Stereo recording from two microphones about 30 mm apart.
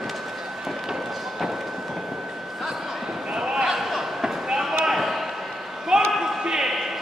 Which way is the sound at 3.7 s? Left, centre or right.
Centre.